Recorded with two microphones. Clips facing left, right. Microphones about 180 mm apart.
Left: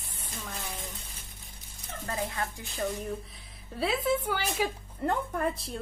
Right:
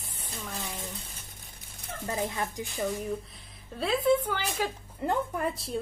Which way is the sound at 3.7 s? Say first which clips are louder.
Right 3 dB; 5° left (ahead or behind).